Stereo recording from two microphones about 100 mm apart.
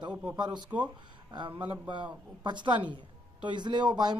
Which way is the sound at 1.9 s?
50° right (ahead or behind).